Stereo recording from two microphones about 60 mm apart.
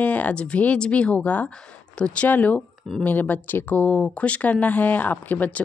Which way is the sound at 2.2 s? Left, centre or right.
Left.